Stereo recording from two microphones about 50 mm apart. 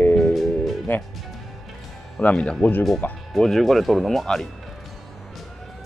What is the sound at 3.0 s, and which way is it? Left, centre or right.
Speech, left.